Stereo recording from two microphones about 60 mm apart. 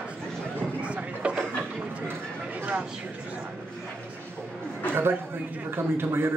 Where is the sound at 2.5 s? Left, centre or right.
Right.